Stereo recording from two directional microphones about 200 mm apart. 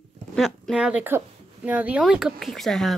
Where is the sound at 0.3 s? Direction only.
Centre (ahead or behind).